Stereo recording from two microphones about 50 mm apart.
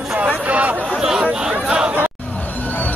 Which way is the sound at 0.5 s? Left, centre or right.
Right.